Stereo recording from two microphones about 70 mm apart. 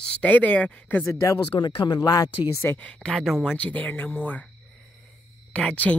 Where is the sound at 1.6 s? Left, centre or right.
Left.